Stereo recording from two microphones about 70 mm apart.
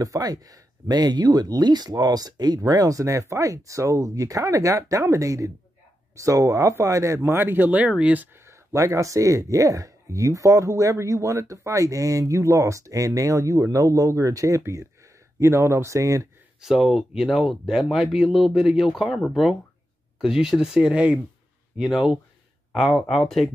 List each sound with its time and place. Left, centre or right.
0.0 s speech: right
2.6 s speech: right
7.2 s speech: right
8.5 s speech: right
16.6 s speech: centre